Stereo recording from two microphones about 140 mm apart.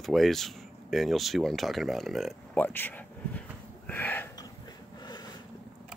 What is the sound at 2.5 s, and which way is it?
Speech, 15° left (ahead or behind).